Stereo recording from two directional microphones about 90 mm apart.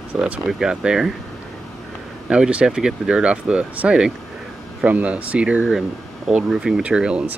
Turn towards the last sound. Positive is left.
turn(degrees=-10)  # may be behind; listen again after turning